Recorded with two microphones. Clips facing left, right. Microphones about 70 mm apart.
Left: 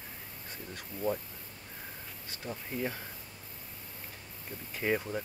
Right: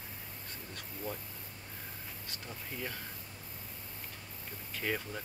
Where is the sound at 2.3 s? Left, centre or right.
Left.